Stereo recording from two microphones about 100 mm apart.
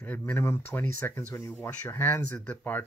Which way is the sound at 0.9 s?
25° left (ahead or behind).